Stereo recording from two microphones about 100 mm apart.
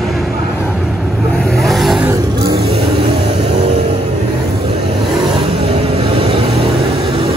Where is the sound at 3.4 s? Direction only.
80° right.